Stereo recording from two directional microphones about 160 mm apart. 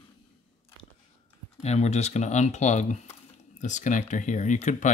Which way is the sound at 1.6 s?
45° left (ahead or behind).